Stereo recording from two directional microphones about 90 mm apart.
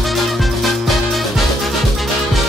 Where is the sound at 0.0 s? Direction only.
Centre (ahead or behind).